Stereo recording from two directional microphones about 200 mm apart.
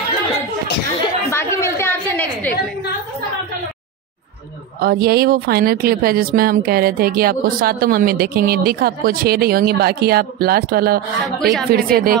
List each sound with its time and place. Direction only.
1.3 s a sound: 15° left (ahead or behind)
4.7 s speech: 50° right (ahead or behind)
11.2 s a woman's voice: centre (ahead or behind)
11.7 s speech: 50° right (ahead or behind)